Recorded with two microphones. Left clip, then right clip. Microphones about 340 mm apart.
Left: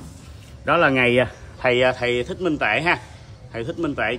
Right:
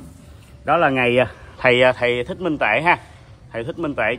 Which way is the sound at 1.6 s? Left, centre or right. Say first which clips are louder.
Right 4 dB; right.